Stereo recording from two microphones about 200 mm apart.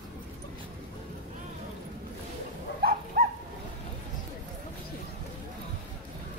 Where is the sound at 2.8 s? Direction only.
50° right (ahead or behind).